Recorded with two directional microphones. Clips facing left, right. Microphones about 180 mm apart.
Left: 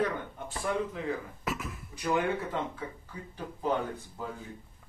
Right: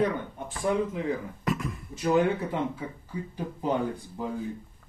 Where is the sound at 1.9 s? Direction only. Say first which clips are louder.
Right 6 dB; 25° right (ahead or behind).